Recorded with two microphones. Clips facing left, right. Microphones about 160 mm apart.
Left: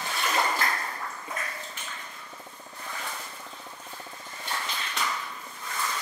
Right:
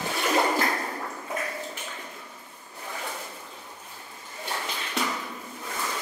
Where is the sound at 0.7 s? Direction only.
25° right (ahead or behind).